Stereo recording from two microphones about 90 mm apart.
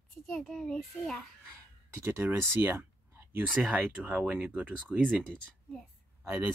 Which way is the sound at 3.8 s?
15° right (ahead or behind).